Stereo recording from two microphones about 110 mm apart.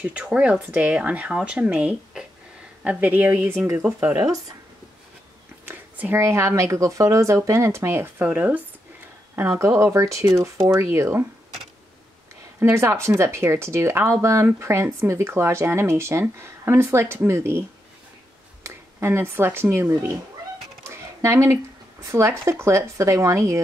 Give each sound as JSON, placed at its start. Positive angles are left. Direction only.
{"t": 0.0, "sound": "speech", "side_deg": -10}
{"t": 5.7, "sound": "speech", "side_deg": -20}
{"t": 8.2, "sound": "speech", "side_deg": -15}
{"t": 12.5, "sound": "speech", "side_deg": -25}
{"t": 20.8, "sound": "a sound", "side_deg": -25}
{"t": 22.1, "sound": "speech", "side_deg": -25}